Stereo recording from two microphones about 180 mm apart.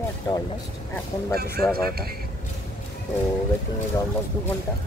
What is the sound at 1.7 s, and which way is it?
Speech, 60° right (ahead or behind).